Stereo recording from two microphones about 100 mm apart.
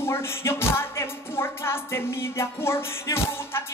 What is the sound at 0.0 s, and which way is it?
Music, 25° left (ahead or behind).